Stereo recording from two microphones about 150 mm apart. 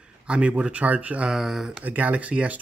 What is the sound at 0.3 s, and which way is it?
Speech, 10° right (ahead or behind).